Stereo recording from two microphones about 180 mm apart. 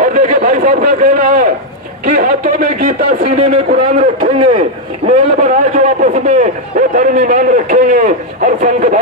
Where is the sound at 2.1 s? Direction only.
45° right (ahead or behind).